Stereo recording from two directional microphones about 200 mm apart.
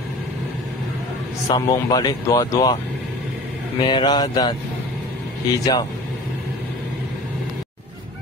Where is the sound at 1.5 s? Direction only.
20° left (ahead or behind).